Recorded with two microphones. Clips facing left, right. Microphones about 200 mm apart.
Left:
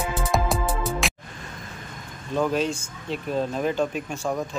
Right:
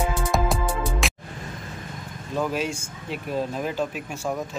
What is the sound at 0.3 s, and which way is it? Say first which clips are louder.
Music: even; centre (ahead or behind).